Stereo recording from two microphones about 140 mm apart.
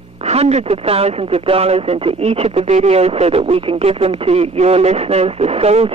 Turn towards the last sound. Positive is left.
turn(degrees=-45)  # may be behind; listen again after turning